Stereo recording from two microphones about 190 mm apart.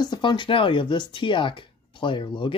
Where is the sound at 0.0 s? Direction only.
20° left (ahead or behind).